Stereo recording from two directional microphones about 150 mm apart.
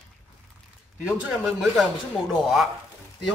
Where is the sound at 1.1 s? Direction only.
Centre (ahead or behind).